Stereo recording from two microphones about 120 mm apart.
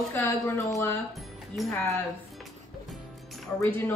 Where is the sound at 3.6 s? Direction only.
20° left (ahead or behind).